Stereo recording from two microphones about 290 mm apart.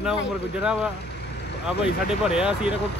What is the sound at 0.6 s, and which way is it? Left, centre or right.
Speech, centre.